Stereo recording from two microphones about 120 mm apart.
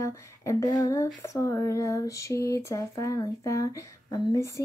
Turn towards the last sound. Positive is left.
turn(degrees=25)  # may be behind; listen again after turning